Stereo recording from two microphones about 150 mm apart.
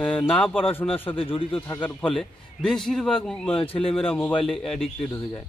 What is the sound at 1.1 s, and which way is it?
Speech, 35° left (ahead or behind).